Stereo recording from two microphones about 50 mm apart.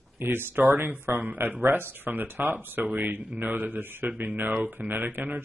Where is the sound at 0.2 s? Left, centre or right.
Right.